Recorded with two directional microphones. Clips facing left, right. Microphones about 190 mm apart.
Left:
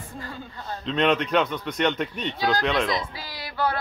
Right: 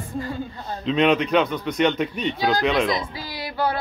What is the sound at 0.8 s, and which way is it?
A man's voice, 5° right (ahead or behind).